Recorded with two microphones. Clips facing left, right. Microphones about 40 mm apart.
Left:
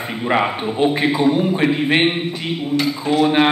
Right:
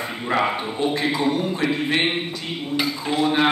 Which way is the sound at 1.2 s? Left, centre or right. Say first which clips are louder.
Left 6 dB; centre.